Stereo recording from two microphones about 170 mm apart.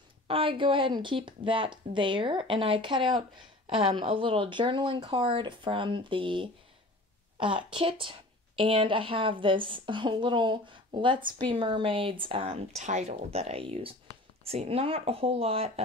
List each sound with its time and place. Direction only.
0.3 s a woman's voice: 30° right (ahead or behind)